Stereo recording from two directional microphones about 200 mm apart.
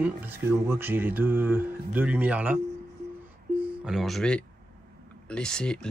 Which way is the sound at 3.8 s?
Centre (ahead or behind).